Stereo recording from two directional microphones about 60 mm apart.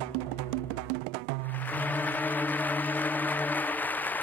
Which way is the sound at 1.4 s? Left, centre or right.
Left.